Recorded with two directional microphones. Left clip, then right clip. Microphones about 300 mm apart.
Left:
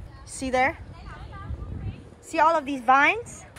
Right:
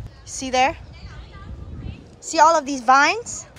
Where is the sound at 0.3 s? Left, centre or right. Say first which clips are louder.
Right 4 dB; centre.